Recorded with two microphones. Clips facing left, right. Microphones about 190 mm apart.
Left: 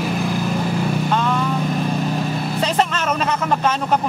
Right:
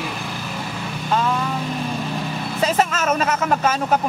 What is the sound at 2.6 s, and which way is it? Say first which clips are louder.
Speech: right 2 dB; 5° right (ahead or behind).